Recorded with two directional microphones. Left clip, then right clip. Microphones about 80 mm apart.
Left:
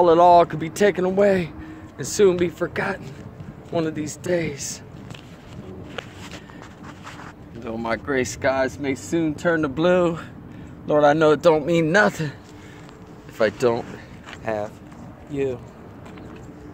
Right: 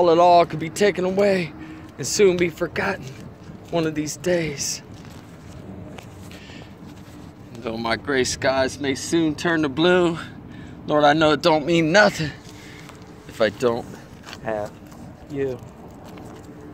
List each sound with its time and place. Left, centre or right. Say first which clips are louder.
0.0 s speech: left 1 dB; left
7.7 s speech: right 1 dB; left
13.4 s speech: even; left